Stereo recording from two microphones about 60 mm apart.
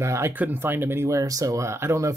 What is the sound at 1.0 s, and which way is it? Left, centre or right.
Speech, right.